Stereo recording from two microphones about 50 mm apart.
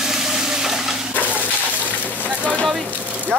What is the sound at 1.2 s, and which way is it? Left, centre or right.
Slosh, right.